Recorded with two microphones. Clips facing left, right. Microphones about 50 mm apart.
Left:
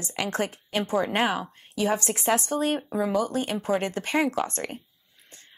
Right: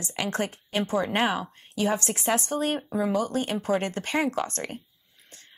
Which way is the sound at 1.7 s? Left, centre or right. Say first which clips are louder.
Left 1 dB; left.